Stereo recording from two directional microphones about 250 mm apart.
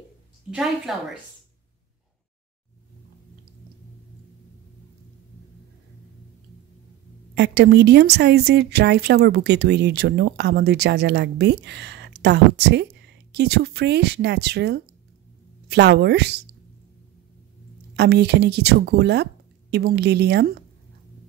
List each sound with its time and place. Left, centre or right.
0.5 s a woman's voice: centre
7.3 s speech: right
17.9 s speech: right